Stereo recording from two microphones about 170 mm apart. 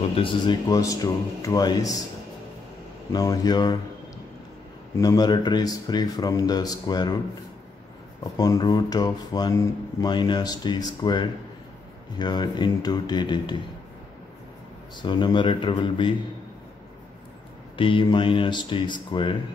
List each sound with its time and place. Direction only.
0.1 s speech: 30° left (ahead or behind)
3.1 s speech: 20° left (ahead or behind)
4.9 s speech: 20° left (ahead or behind)
8.2 s speech: 20° left (ahead or behind)
15.0 s speech: 25° left (ahead or behind)
17.7 s speech: 30° left (ahead or behind)